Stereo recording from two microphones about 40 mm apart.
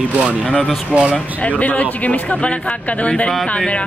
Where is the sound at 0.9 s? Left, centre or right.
Right.